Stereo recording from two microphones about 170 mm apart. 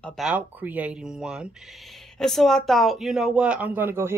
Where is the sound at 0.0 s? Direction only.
Centre (ahead or behind).